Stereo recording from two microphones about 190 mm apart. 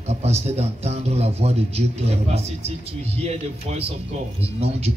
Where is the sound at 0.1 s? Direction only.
35° right (ahead or behind).